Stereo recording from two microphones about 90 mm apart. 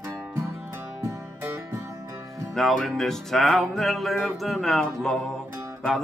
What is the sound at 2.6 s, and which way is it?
Music, centre (ahead or behind).